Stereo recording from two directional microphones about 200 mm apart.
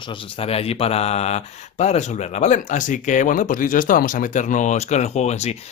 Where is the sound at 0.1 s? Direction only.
30° left (ahead or behind).